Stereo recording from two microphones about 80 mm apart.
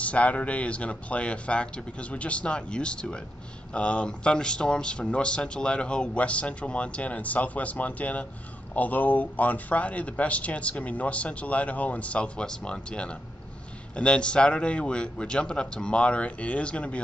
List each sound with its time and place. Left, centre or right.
0.0 s speech: centre